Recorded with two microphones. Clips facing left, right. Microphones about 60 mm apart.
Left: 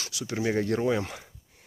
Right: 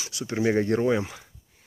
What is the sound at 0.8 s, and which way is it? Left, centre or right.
Speech, centre.